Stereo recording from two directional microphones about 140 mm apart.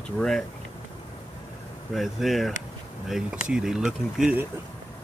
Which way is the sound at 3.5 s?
5° right (ahead or behind).